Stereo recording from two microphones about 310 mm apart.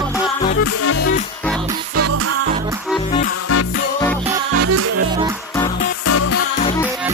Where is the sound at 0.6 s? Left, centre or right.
Left.